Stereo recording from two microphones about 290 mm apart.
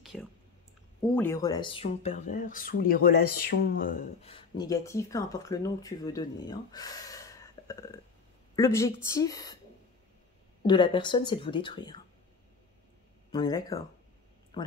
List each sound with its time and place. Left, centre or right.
0.0 s clicking: centre
1.1 s speech: centre
7.6 s burping: centre
8.5 s speech: centre
10.6 s speech: centre
13.3 s speech: centre